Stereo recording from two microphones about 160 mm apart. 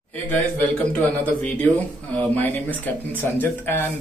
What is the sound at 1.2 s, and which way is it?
Speech, 10° left (ahead or behind).